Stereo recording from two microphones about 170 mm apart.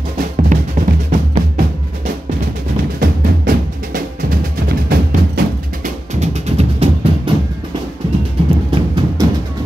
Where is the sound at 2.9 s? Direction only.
55° right (ahead or behind).